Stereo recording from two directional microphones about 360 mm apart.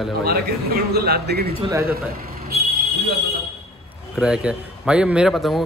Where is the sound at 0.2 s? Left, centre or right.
Right.